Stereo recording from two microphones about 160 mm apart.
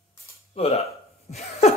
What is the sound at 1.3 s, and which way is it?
Speech, 45° left (ahead or behind).